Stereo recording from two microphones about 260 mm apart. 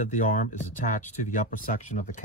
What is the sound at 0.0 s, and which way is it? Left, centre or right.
Speech, left.